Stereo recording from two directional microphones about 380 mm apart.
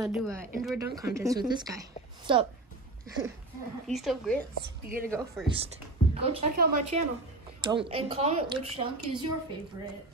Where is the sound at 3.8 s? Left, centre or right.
Centre.